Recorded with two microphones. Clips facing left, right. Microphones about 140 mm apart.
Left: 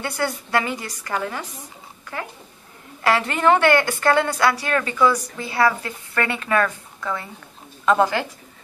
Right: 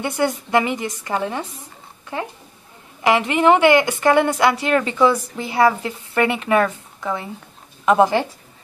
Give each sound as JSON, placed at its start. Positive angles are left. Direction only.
{"t": 0.0, "sound": "a woman's voice", "side_deg": -20}